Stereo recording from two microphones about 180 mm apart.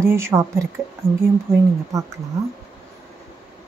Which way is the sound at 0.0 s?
15° right (ahead or behind).